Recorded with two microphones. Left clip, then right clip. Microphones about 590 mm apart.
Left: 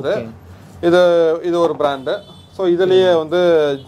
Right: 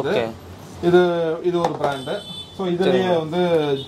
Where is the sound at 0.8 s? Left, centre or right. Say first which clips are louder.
Left 6 dB; left.